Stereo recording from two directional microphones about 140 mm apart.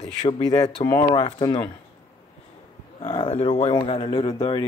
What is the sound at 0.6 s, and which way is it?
A man's voice, 30° left (ahead or behind).